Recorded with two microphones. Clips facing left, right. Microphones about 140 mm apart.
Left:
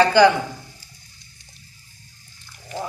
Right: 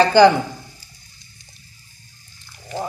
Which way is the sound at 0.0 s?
20° right (ahead or behind).